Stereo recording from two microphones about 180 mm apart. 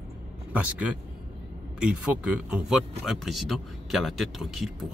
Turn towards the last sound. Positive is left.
turn(degrees=0)  # may be behind; listen again after turning